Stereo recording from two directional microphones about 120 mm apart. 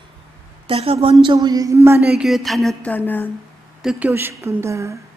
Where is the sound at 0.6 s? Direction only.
50° right (ahead or behind).